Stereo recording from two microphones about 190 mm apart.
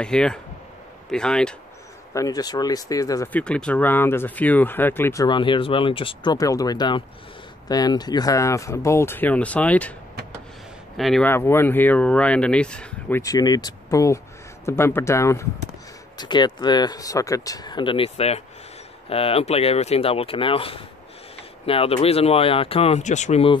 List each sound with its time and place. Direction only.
0.0 s speech: 5° left (ahead or behind)
2.1 s speech: 20° left (ahead or behind)
3.3 s speech: 5° left (ahead or behind)
11.0 s speech: centre (ahead or behind)
11.2 s speech: 15° left (ahead or behind)
13.2 s speech: 20° left (ahead or behind)